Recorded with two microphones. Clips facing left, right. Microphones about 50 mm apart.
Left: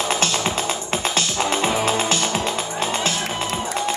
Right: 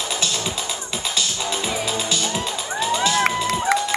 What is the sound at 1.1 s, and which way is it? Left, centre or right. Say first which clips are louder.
Music: left 3 dB; left.